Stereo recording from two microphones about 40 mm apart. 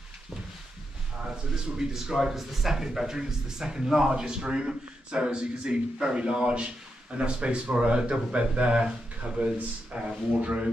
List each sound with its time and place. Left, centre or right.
1.3 s speech: centre